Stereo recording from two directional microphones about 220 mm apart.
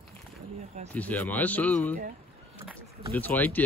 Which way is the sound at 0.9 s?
5° left (ahead or behind).